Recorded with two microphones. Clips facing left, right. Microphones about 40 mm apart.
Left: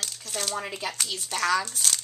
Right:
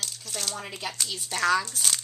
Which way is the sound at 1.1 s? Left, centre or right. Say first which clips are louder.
Right 1 dB; centre.